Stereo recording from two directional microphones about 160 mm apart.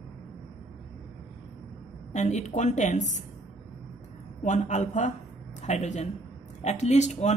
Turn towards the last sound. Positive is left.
turn(degrees=45)  # may be behind; listen again after turning